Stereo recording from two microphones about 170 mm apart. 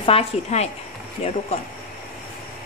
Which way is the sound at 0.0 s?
35° left (ahead or behind).